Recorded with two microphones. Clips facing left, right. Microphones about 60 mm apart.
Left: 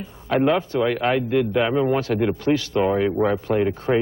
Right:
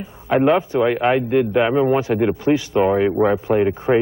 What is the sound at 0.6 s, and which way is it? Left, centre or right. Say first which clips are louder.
A man's voice: right 4 dB; centre.